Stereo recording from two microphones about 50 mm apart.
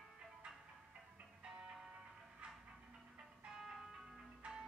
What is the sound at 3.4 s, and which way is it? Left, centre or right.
Music, centre.